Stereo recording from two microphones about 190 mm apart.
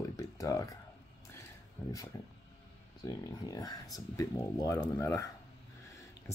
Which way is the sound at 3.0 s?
20° left (ahead or behind).